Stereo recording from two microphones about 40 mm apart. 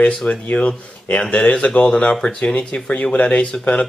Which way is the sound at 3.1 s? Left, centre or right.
Left.